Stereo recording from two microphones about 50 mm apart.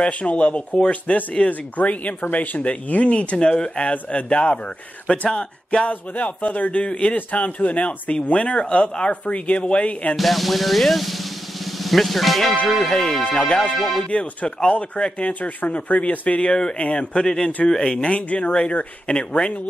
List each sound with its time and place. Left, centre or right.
0.0 s speech: left
5.9 s a man's voice: left
6.8 s speech: left
10.1 s speech: centre
12.6 s speech: centre